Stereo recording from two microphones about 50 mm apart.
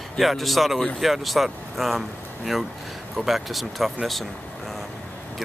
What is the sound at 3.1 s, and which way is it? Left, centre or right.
Speech, centre.